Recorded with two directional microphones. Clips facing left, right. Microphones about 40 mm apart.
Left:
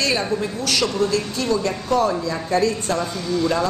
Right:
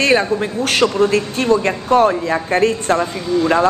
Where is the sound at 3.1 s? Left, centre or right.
Right.